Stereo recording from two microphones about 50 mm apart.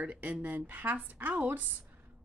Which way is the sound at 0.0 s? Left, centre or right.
Right.